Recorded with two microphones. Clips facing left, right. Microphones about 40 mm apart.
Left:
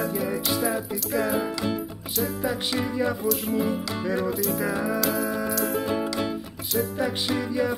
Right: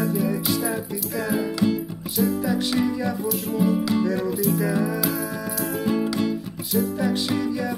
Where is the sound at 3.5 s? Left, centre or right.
Centre.